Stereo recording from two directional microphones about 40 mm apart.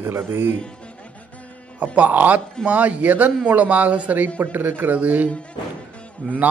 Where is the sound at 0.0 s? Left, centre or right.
Right.